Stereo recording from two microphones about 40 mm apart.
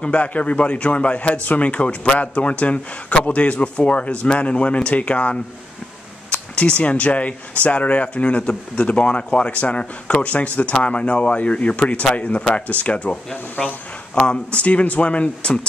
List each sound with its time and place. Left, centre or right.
0.0 s speech: left
14.2 s speech: left